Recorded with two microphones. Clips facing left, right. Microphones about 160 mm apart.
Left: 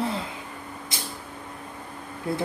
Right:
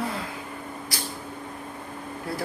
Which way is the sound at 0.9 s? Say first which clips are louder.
Right 2 dB; 25° left (ahead or behind).